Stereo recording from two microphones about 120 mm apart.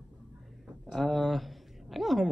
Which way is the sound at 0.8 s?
5° left (ahead or behind).